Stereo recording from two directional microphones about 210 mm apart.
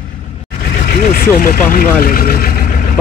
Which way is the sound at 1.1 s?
45° left (ahead or behind).